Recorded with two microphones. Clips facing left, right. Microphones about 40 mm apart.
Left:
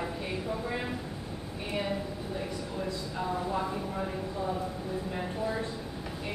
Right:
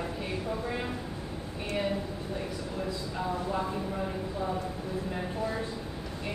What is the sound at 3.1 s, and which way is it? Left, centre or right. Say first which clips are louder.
Speech: even; centre.